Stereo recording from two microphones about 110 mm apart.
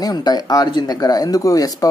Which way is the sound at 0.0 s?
35° left (ahead or behind).